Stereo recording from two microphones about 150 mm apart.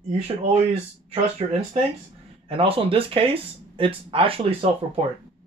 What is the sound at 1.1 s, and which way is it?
Speech, 45° right (ahead or behind).